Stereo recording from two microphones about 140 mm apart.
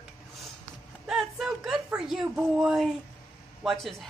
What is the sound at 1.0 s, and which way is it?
Speech, centre (ahead or behind).